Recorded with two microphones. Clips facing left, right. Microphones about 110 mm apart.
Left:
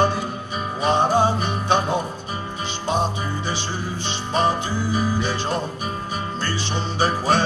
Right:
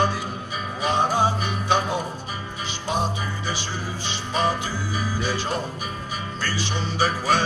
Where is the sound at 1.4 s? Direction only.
25° left (ahead or behind).